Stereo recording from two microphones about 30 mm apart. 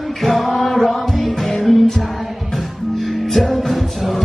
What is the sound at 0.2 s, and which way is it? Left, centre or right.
Music, centre.